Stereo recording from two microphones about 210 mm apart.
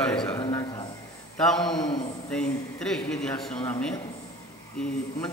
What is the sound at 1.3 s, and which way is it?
A man's voice, 5° left (ahead or behind).